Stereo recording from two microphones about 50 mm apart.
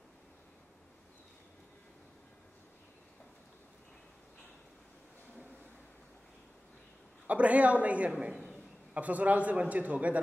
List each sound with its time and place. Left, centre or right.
7.2 s a woman's voice: right